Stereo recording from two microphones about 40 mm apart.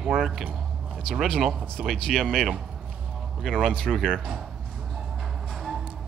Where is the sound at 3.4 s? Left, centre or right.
Centre.